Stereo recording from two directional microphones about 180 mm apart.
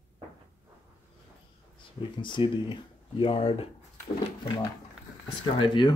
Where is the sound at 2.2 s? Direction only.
25° left (ahead or behind).